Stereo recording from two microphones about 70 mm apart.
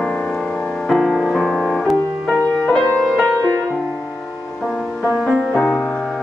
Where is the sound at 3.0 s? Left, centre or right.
Centre.